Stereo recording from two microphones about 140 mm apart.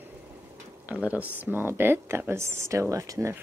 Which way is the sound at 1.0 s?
10° right (ahead or behind).